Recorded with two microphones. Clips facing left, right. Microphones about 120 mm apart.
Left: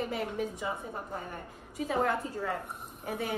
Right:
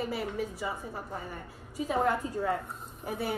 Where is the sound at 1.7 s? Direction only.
10° right (ahead or behind).